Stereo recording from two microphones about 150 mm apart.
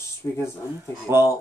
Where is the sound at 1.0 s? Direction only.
15° right (ahead or behind).